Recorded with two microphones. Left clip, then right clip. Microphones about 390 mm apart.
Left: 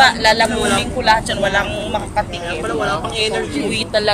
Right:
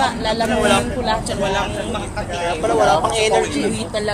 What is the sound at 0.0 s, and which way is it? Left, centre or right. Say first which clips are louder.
Speech: left 7 dB; left.